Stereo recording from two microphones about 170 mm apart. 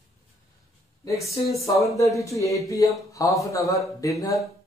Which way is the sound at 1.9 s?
20° left (ahead or behind).